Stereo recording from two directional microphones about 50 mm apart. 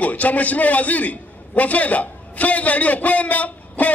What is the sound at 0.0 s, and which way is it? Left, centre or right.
A man's voice, left.